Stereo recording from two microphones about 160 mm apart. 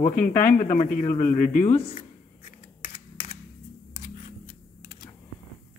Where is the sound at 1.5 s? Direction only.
50° left (ahead or behind).